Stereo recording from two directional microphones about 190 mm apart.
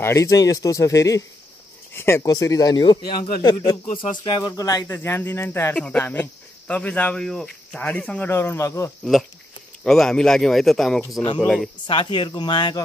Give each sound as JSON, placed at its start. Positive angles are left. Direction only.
{"t": 0.0, "sound": "a man's voice", "side_deg": 15}
{"t": 9.8, "sound": "speech", "side_deg": 5}
{"t": 11.8, "sound": "speech", "side_deg": 25}